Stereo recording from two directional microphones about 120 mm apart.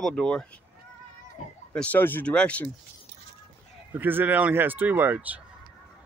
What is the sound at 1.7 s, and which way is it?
Speech, 15° left (ahead or behind).